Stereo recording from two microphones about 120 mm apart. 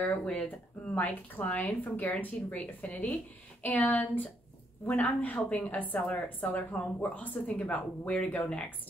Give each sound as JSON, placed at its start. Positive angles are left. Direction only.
{"t": 0.0, "sound": "a woman's voice", "side_deg": 10}